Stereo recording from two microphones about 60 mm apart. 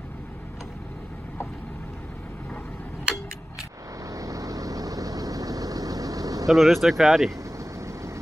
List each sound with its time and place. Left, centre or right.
4.1 s vehicle: right
6.4 s speech: centre
7.5 s vehicle: right